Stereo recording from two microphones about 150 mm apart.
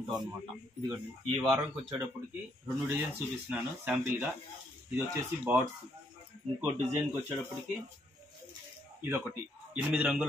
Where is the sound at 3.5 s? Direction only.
10° right (ahead or behind).